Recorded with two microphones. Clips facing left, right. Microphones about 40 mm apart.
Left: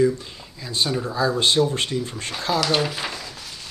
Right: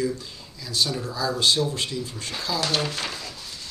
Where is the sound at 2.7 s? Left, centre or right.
Centre.